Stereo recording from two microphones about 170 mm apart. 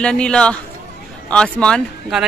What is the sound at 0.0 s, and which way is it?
Speech, 5° left (ahead or behind).